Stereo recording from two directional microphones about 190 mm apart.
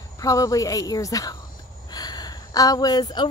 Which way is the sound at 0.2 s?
20° left (ahead or behind).